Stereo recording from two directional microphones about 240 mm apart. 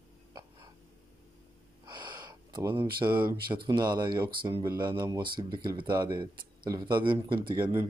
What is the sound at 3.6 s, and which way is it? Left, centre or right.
Speech, centre.